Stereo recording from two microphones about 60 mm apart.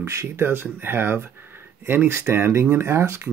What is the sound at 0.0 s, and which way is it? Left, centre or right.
Speech, right.